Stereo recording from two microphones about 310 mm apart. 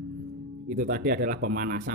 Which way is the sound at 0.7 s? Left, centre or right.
Right.